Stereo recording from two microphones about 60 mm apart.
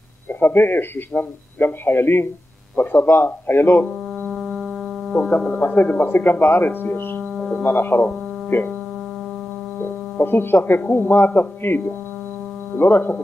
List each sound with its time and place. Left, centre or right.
0.4 s speech: left
5.1 s speech: centre
5.6 s speech: left
7.3 s music: centre
7.6 s speech: left
9.8 s speech: left